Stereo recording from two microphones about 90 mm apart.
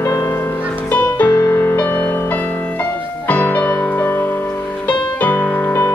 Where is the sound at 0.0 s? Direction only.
35° left (ahead or behind).